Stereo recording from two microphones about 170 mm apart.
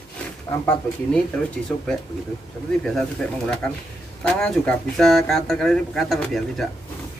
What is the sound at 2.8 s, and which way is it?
Speech, 5° left (ahead or behind).